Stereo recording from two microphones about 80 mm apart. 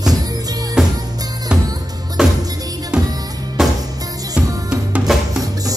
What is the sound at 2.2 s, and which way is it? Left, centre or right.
Music, centre.